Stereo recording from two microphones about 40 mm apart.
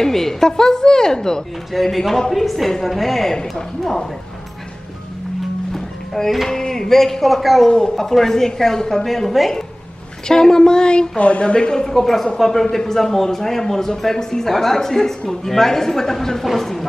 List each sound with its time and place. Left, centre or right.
0.0 s a man's voice: centre
1.7 s speech: centre
6.2 s a man's voice: centre
7.9 s a man's voice: centre
10.2 s a woman's voice: centre
11.9 s a man's voice: centre